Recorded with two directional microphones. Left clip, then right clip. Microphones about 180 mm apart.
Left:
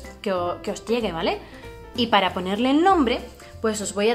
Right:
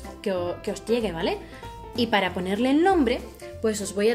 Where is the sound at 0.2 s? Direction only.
15° right (ahead or behind).